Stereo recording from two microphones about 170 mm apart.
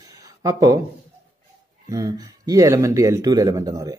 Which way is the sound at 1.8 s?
20° right (ahead or behind).